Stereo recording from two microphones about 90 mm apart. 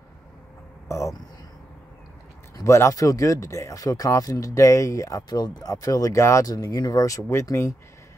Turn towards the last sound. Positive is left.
turn(degrees=30)  # may be behind; listen again after turning